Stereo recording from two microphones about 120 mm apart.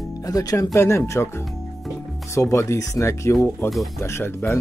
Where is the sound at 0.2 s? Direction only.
30° left (ahead or behind).